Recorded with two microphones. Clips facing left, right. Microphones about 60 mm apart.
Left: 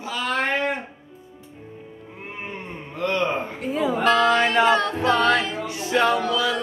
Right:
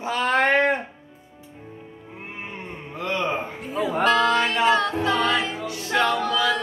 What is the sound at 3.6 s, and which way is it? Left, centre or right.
Music, left.